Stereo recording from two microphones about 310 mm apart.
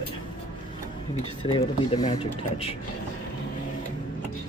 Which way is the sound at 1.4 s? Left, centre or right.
Centre.